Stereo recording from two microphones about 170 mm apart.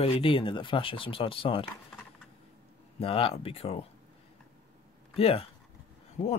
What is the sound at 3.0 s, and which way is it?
Speech, 35° left (ahead or behind).